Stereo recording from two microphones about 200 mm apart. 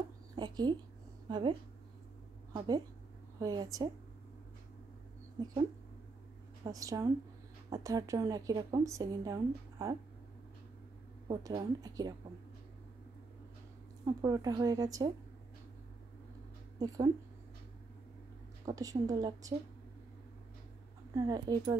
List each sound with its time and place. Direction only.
0.4 s a sound: 20° right (ahead or behind)
1.3 s a woman's voice: 25° right (ahead or behind)
5.4 s a woman's voice: 25° right (ahead or behind)
11.2 s a woman's voice: 20° right (ahead or behind)
14.0 s a woman's voice: 20° right (ahead or behind)
16.8 s speech: 20° right (ahead or behind)
18.7 s a woman's voice: 15° right (ahead or behind)
21.1 s speech: 20° right (ahead or behind)